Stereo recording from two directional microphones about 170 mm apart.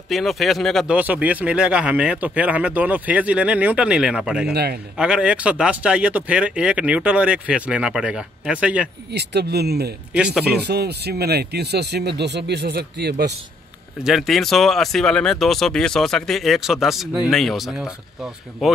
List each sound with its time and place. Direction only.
0.1 s speech: centre (ahead or behind)
0.9 s speech: 10° right (ahead or behind)
4.5 s speech: 70° right (ahead or behind)
4.9 s speech: 5° right (ahead or behind)
9.1 s speech: 80° right
10.1 s speech: 5° right (ahead or behind)
10.4 s speech: 75° right (ahead or behind)
14.0 s speech: centre (ahead or behind)